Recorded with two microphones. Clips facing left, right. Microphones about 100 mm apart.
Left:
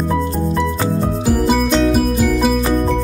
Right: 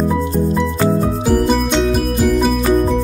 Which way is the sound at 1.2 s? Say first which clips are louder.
Left 1 dB; 5° left (ahead or behind).